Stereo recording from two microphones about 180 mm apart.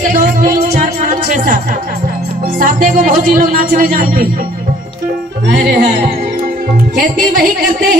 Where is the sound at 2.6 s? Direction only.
50° right (ahead or behind).